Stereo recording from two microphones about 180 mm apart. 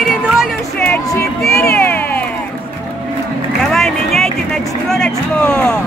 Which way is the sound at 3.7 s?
Centre (ahead or behind).